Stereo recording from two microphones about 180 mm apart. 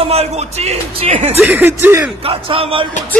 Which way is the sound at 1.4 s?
10° right (ahead or behind).